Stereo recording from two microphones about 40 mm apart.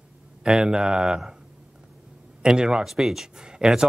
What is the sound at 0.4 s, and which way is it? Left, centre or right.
Speech, centre.